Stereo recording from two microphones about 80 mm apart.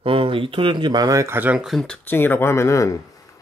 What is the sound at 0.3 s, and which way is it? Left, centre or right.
Speech, right.